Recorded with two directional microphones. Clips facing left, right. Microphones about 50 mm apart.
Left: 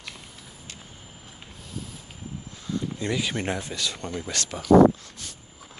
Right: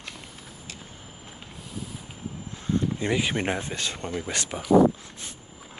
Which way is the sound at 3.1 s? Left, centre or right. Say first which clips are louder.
Right 1 dB; right.